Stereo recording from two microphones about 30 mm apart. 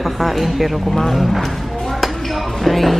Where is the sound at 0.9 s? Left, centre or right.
Centre.